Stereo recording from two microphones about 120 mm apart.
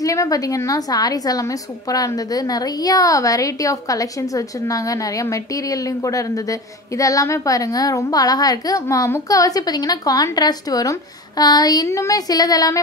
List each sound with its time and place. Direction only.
0.0 s a woman's voice: 30° left (ahead or behind)